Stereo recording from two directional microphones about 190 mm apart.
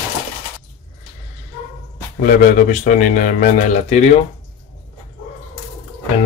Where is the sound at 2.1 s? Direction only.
40° left (ahead or behind).